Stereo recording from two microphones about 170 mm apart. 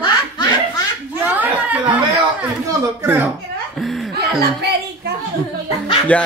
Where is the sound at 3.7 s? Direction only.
Centre (ahead or behind).